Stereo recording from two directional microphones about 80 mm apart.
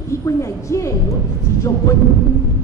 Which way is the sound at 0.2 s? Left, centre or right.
Left.